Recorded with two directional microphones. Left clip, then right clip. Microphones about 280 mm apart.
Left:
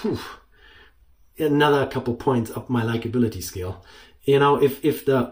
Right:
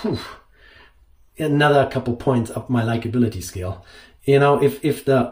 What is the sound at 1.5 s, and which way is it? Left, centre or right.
Speech, centre.